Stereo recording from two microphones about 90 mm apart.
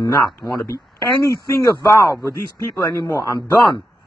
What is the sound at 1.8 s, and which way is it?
Speech, 45° left (ahead or behind).